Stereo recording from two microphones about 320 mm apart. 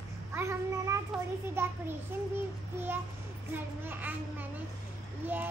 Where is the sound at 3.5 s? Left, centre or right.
Centre.